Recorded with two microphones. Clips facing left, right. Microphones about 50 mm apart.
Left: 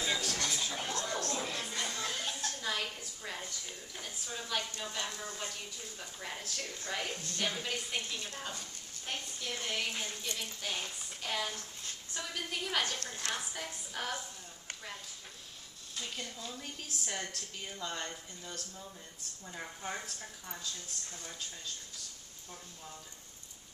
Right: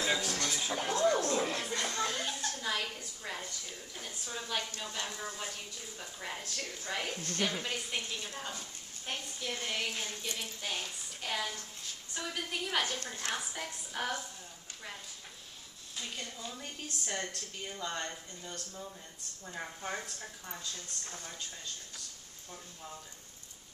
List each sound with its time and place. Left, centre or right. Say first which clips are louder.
0.0 s a sound: right 2 dB; centre
1.4 s music: right 4 dB; centre
1.8 s a sound: right 3 dB; centre
4.9 s speech: right 2 dB; centre
7.2 s a woman's voice: right 4 dB; right
7.6 s a woman's voice: even; centre
13.5 s speech: right 1 dB; centre
16.0 s speech: even; centre